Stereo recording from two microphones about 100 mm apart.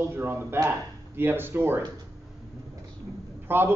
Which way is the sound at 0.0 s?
20° right (ahead or behind).